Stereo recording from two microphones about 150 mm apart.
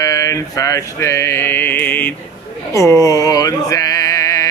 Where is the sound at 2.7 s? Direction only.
20° left (ahead or behind).